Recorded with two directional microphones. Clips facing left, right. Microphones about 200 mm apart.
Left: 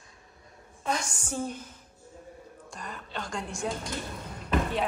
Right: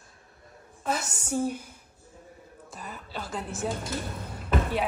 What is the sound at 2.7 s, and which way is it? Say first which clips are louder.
Music: even; 5° right (ahead or behind).